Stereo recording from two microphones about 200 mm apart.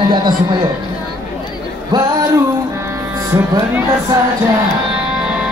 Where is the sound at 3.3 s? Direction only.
10° right (ahead or behind).